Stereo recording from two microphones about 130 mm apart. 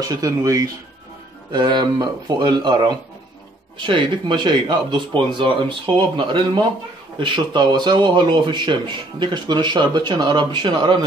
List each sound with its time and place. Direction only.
0.1 s speech: 30° right (ahead or behind)